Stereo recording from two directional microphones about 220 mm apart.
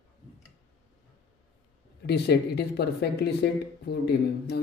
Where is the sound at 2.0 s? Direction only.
50° left (ahead or behind).